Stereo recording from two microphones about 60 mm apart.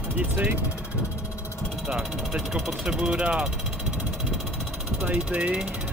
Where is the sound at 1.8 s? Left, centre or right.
Centre.